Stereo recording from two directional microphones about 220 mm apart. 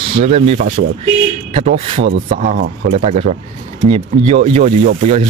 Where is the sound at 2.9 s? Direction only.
30° right (ahead or behind).